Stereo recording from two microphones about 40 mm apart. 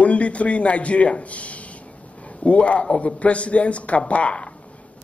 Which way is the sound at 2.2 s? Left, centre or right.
Left.